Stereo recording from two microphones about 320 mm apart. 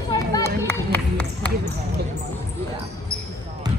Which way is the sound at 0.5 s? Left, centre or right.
Centre.